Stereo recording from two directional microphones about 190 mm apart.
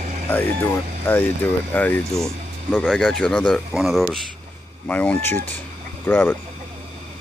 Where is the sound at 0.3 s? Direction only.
10° left (ahead or behind).